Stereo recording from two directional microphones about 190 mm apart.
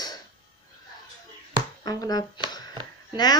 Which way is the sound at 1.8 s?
20° left (ahead or behind).